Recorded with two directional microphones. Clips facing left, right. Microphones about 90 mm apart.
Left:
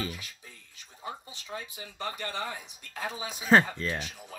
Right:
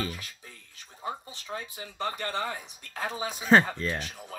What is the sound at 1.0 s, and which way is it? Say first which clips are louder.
Speech: right 4 dB; 45° right (ahead or behind).